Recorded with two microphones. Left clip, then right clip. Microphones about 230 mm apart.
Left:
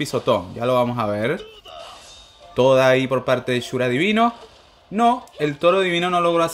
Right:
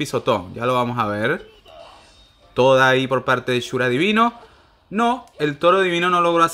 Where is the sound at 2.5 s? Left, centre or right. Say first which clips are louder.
Even; centre.